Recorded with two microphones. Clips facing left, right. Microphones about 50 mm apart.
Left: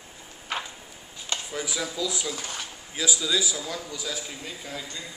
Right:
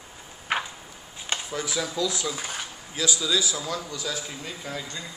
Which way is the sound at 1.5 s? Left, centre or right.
Centre.